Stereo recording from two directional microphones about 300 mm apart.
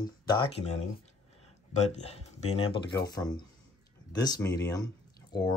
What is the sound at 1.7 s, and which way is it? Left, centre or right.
Speech, left.